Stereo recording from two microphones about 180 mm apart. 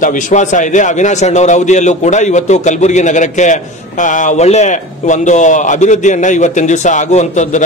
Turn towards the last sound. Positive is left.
turn(degrees=40)  # may be behind; listen again after turning